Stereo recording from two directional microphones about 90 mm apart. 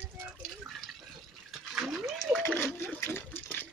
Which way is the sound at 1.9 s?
5° right (ahead or behind).